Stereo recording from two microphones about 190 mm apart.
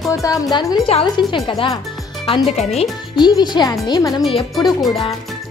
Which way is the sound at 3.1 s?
20° left (ahead or behind).